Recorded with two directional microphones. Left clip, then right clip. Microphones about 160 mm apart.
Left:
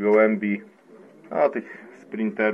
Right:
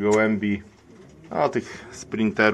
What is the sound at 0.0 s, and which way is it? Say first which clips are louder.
Speech: left 2 dB; 25° right (ahead or behind).